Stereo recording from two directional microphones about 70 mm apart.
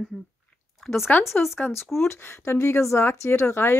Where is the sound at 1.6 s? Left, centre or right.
Centre.